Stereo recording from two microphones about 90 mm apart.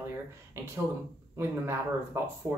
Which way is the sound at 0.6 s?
30° right (ahead or behind).